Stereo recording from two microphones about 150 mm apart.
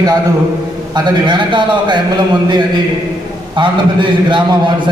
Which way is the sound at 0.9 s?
30° right (ahead or behind).